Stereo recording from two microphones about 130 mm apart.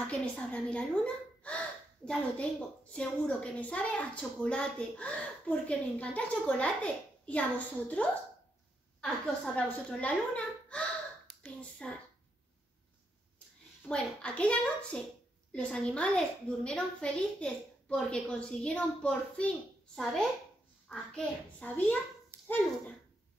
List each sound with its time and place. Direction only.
0.0 s a woman's voice: 10° left (ahead or behind)
13.8 s speech: 10° left (ahead or behind)
20.9 s speech: 10° left (ahead or behind)